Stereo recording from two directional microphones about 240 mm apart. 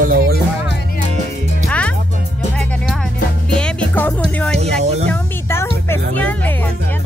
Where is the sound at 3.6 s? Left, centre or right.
Centre.